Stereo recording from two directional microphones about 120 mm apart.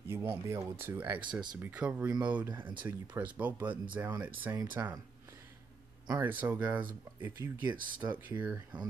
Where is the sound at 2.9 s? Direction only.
15° right (ahead or behind).